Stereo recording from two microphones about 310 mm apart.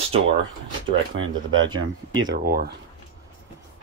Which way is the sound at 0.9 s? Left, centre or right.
Right.